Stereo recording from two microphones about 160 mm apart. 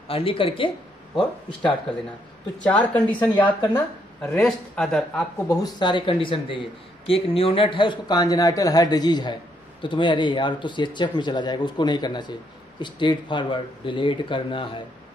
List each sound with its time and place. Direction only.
0.1 s speech: 35° left (ahead or behind)
2.6 s speech: 10° left (ahead or behind)
3.3 s speech: 30° left (ahead or behind)
4.2 s a man's voice: 5° left (ahead or behind)
5.5 s speech: 25° left (ahead or behind)